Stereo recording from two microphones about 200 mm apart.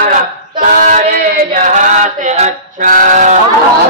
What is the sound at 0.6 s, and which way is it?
A capella, 40° right (ahead or behind).